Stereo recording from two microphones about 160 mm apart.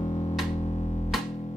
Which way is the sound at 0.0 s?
35° left (ahead or behind).